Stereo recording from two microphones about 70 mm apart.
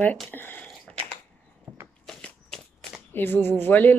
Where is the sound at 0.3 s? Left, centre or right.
Left.